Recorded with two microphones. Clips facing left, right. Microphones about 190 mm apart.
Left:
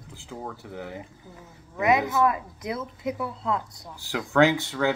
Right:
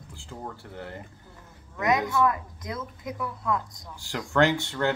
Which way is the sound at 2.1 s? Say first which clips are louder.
Left 1 dB; 20° left (ahead or behind).